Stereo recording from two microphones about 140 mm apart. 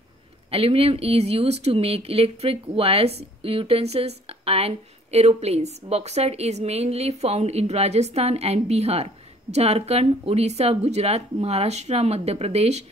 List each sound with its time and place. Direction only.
0.5 s speech: 45° right (ahead or behind)